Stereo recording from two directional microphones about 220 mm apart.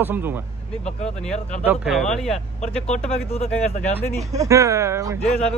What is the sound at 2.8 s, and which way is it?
Speech, 30° left (ahead or behind).